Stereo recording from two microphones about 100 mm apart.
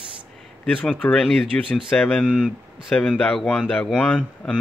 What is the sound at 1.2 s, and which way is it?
Speech, centre (ahead or behind).